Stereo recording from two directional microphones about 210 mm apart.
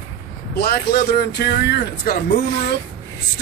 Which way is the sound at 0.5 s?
50° left (ahead or behind).